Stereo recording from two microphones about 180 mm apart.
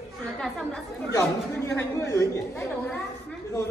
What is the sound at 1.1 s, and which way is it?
A woman's voice, 15° left (ahead or behind).